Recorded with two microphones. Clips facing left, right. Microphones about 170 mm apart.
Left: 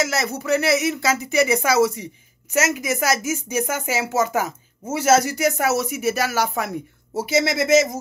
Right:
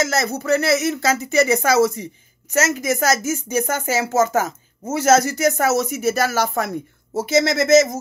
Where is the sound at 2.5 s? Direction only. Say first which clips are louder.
Right 2 dB; 15° left (ahead or behind).